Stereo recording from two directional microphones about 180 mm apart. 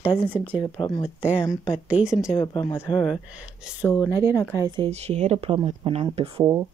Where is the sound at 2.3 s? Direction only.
25° left (ahead or behind).